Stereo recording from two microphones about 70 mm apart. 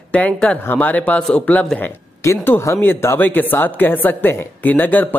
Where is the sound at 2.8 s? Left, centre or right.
Left.